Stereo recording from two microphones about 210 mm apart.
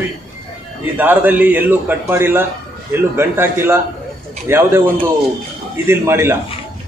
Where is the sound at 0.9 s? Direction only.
10° right (ahead or behind).